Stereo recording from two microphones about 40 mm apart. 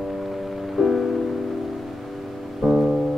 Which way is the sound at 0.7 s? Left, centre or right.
Centre.